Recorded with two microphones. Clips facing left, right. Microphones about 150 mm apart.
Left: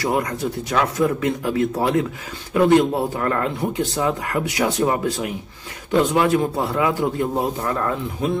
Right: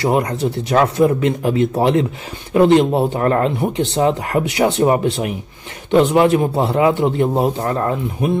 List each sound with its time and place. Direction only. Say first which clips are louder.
0.0 s a man's voice: right 5 dB; 25° right (ahead or behind)